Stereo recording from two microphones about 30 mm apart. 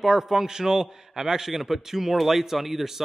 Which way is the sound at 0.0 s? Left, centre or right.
Centre.